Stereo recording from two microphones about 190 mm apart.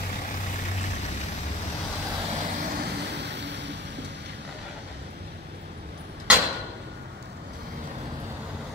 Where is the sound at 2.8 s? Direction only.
65° right (ahead or behind).